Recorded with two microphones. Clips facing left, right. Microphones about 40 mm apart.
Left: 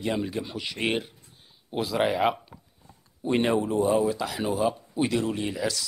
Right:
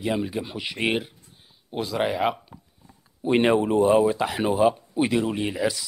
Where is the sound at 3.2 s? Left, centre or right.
Right.